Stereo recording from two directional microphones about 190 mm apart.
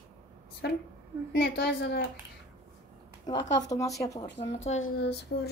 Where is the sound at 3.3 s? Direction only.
20° left (ahead or behind).